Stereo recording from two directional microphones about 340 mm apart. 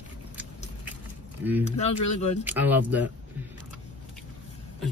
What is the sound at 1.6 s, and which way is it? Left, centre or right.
Speech, centre.